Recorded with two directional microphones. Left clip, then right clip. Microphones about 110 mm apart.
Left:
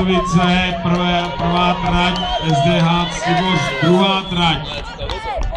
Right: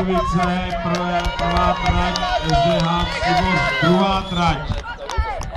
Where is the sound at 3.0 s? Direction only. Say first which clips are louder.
Left 1 dB; 5° left (ahead or behind).